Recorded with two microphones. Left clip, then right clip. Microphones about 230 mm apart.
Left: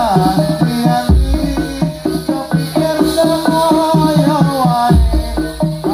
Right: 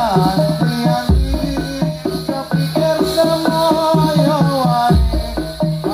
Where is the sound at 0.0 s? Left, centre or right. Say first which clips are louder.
Left 2 dB; right.